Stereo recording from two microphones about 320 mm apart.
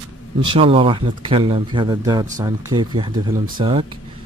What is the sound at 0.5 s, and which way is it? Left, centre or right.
Speech, centre.